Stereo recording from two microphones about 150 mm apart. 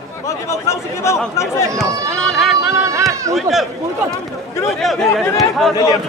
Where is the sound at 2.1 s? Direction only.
5° left (ahead or behind).